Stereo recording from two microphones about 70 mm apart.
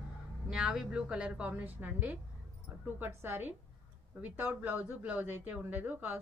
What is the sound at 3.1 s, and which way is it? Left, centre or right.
A woman's voice, right.